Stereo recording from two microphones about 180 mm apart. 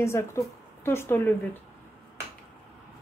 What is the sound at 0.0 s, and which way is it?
A woman's voice, 15° left (ahead or behind).